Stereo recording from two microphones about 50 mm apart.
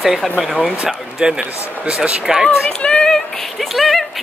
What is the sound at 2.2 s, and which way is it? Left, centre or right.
Speech, centre.